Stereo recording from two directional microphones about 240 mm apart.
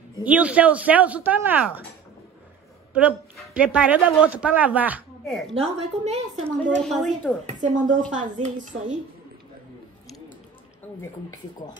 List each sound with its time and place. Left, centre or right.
0.2 s speech: centre
2.9 s a woman's voice: centre
5.5 s a woman's voice: right
7.0 s a woman's voice: centre
7.4 s a woman's voice: right